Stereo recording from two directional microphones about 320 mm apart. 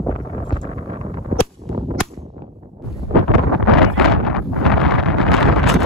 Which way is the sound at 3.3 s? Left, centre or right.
Centre.